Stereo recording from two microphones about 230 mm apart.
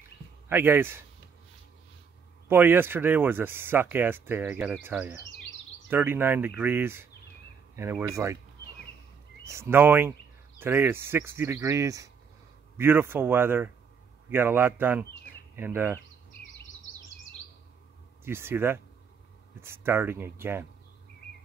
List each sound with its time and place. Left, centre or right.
0.5 s speech: centre
2.4 s speech: centre
9.4 s speech: centre
18.2 s speech: centre